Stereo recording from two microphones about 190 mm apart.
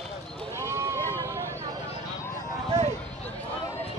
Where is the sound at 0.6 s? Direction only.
15° right (ahead or behind).